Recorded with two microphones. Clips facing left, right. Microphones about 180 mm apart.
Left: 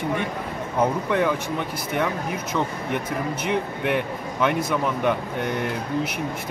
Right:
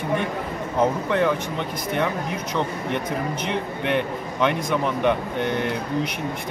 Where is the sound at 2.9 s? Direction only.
5° left (ahead or behind).